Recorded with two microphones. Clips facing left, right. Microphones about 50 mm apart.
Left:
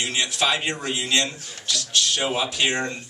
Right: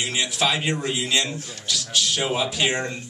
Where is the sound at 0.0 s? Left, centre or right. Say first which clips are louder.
Even; centre.